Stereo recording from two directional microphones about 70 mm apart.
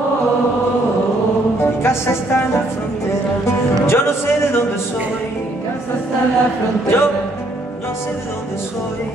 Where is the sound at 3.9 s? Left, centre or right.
Left.